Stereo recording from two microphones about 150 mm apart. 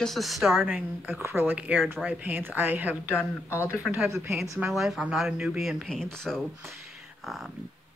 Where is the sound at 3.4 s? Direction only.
20° left (ahead or behind).